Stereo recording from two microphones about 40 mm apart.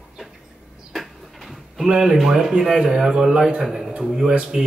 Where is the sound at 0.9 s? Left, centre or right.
Centre.